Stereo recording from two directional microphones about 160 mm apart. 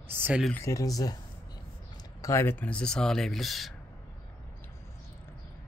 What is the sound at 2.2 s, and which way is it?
Speech, 15° left (ahead or behind).